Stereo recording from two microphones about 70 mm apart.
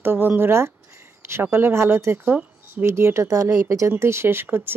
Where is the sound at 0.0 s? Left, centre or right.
Right.